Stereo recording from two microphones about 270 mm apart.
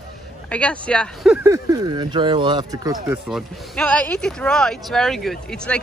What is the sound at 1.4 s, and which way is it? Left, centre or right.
Speech, centre.